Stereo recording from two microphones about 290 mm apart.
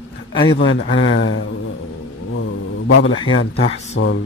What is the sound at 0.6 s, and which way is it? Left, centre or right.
Speech, left.